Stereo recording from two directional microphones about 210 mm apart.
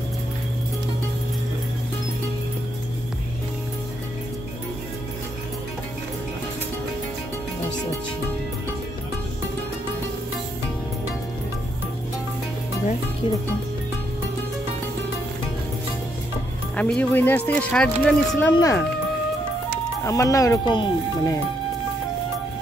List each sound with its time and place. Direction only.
16.7 s speech: 5° left (ahead or behind)
18.5 s speech: 15° left (ahead or behind)
20.1 s speech: 15° left (ahead or behind)